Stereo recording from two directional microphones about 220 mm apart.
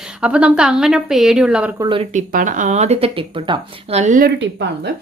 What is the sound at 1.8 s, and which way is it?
Speech, 25° right (ahead or behind).